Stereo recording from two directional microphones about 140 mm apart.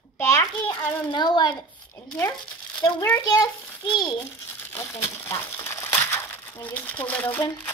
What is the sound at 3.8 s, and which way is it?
Speech, 35° left (ahead or behind).